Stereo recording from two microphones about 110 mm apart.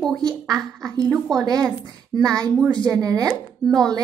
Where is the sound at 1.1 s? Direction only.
Centre (ahead or behind).